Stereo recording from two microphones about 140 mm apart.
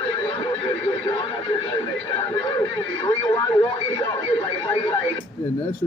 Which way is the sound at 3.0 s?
35° left (ahead or behind).